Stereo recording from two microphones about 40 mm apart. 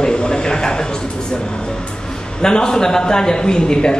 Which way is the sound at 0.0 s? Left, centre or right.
Centre.